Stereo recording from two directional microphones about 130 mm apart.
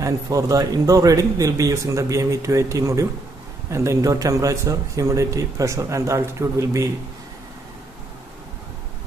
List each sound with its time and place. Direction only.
0.0 s a man's voice: 25° right (ahead or behind)